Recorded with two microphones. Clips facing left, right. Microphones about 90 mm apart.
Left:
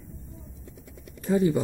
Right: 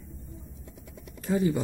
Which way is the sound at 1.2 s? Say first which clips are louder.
Left 3 dB; 15° left (ahead or behind).